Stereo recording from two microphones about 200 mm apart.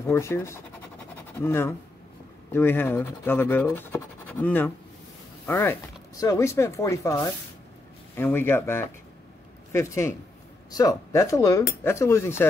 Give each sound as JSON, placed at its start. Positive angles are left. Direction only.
{"t": 0.0, "sound": "speech", "side_deg": 15}